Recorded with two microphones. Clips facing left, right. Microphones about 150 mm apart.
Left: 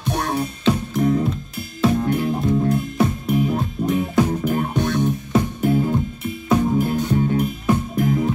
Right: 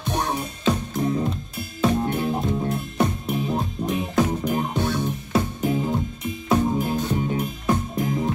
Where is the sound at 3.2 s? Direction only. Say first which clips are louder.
Left 5 dB; 25° right (ahead or behind).